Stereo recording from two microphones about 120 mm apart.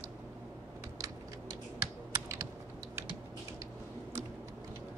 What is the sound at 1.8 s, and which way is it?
Computer keyboard, 25° right (ahead or behind).